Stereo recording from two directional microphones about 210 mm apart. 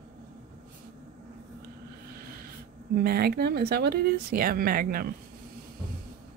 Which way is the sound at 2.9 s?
45° right (ahead or behind).